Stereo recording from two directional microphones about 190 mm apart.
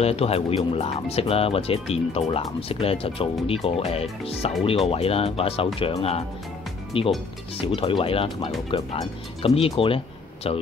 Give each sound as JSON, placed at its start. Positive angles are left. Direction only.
{"t": 0.0, "sound": "speech", "side_deg": 30}